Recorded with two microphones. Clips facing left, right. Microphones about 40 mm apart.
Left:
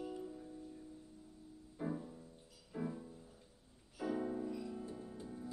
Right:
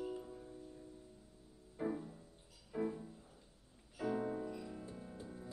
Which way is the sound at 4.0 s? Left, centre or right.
Centre.